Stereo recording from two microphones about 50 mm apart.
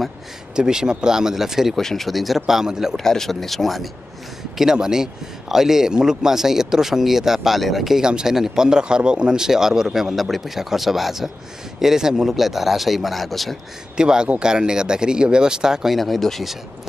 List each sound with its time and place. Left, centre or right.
0.6 s a man's voice: centre
1.8 s a man's voice: centre
3.0 s speech: centre
4.6 s a man's voice: centre
13.9 s a man's voice: centre
16.0 s speech: centre